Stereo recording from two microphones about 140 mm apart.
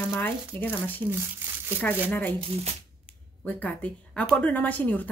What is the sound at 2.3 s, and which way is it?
Speech, 45° right (ahead or behind).